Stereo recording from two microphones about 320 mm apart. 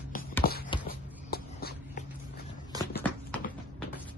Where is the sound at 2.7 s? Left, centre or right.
Centre.